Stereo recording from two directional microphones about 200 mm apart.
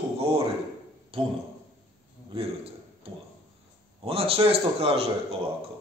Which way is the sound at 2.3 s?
30° right (ahead or behind).